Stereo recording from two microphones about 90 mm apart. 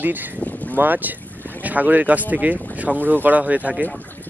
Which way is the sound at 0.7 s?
20° right (ahead or behind).